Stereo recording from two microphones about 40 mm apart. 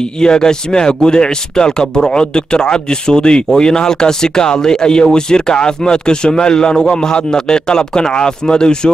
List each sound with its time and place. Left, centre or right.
0.0 s speech: centre